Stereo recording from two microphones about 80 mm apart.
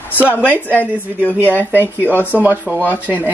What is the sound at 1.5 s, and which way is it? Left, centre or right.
Speech, right.